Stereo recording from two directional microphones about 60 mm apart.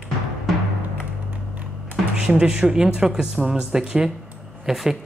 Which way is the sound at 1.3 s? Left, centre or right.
Right.